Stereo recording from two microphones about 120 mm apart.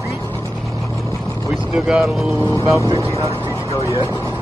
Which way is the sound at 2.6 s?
25° right (ahead or behind).